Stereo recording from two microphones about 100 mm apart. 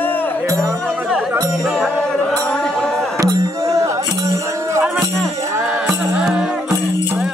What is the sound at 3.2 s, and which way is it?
Music, 35° right (ahead or behind).